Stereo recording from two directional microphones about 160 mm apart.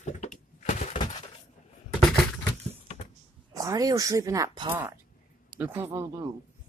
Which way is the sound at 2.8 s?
45° left (ahead or behind).